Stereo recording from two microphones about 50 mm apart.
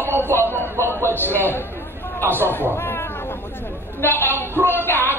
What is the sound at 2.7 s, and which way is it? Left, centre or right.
Cat, left.